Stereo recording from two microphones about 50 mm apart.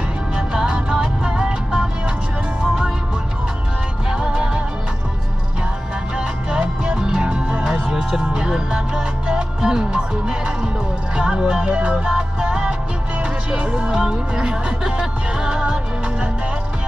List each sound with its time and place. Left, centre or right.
0.4 s music: centre
4.1 s music: centre
6.1 s music: centre